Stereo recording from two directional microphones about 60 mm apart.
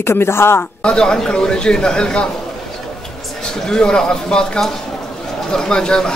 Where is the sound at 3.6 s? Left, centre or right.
Centre.